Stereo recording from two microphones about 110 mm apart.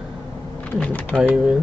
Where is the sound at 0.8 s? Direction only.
10° left (ahead or behind).